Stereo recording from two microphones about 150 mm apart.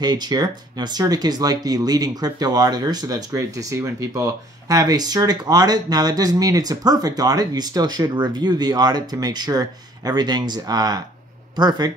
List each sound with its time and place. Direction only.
0.0 s speech: 25° right (ahead or behind)